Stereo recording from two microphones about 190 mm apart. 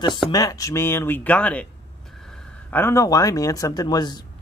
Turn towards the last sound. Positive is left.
turn(degrees=20)  # may be behind; listen again after turning